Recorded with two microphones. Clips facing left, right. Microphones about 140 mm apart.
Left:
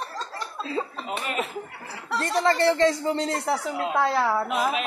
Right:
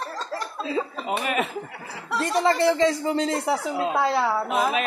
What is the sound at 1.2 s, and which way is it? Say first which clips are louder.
Speech: right 3 dB; 75° right (ahead or behind).